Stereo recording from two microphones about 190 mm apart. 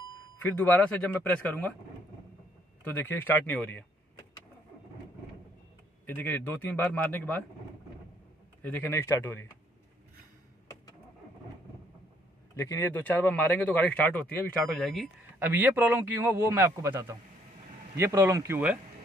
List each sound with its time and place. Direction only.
0.4 s speech: 10° left (ahead or behind)
2.8 s speech: 10° left (ahead or behind)
6.0 s speech: 10° left (ahead or behind)
8.6 s speech: 10° left (ahead or behind)
12.5 s speech: 15° left (ahead or behind)
15.3 s speech: 10° right (ahead or behind)